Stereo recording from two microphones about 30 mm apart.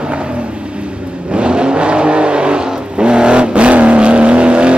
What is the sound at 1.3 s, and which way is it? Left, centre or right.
Vehicle, right.